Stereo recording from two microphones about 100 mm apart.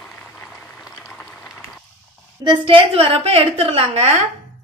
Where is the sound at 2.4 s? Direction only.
55° right (ahead or behind); by 4.1 s 90° right.